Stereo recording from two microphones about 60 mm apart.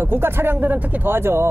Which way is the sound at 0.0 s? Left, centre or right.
Right.